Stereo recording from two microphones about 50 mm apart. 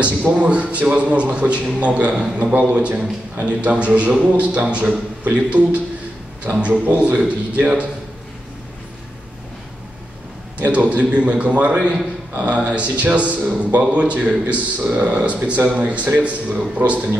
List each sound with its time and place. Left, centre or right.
0.3 s a man's voice: right
10.7 s a man's voice: right